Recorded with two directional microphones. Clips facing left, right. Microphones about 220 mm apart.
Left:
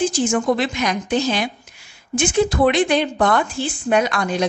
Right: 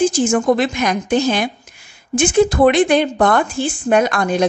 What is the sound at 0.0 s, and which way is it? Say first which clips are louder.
A woman's voice: right 4 dB; 45° right (ahead or behind).